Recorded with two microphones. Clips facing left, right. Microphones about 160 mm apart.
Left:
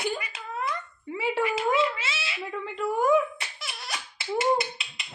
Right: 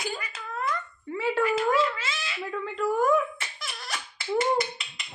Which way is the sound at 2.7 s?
5° left (ahead or behind).